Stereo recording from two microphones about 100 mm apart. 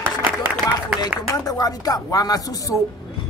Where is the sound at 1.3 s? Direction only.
40° left (ahead or behind).